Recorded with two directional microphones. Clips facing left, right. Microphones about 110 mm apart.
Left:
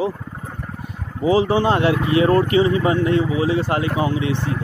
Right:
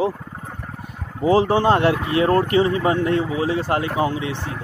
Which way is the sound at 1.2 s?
45° right (ahead or behind).